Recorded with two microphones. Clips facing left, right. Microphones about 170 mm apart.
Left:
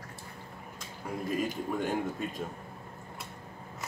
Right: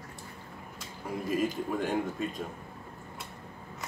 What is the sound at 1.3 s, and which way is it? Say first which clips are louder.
Speech: right 2 dB; centre (ahead or behind).